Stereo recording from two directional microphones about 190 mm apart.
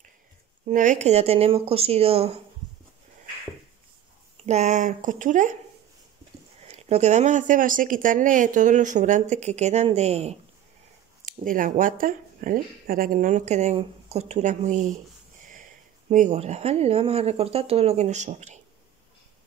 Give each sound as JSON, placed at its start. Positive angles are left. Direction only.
{"t": 0.7, "sound": "speech", "side_deg": -40}
{"t": 4.5, "sound": "speech", "side_deg": -35}
{"t": 6.7, "sound": "speech", "side_deg": -35}
{"t": 11.2, "sound": "speech", "side_deg": -45}
{"t": 16.1, "sound": "speech", "side_deg": -40}